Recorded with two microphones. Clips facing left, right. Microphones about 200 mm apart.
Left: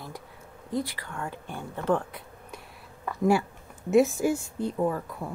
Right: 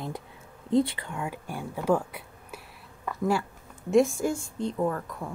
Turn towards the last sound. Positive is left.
turn(degrees=5)  # may be behind; listen again after turning